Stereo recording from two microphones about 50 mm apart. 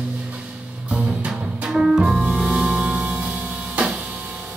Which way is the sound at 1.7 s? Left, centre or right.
Centre.